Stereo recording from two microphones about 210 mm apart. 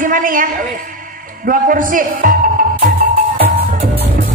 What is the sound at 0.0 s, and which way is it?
Speech, 40° right (ahead or behind).